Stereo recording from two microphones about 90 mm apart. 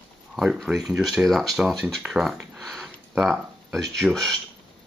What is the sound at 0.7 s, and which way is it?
Speech, centre (ahead or behind).